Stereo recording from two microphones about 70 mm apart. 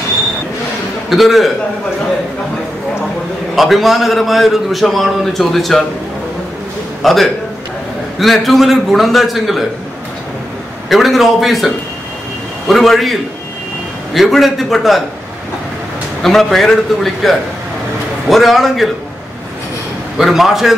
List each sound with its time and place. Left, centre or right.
1.1 s a man's voice: centre
3.5 s a man's voice: centre
7.0 s a man's voice: centre
10.9 s a man's voice: centre
16.2 s a man's voice: centre
20.2 s a man's voice: centre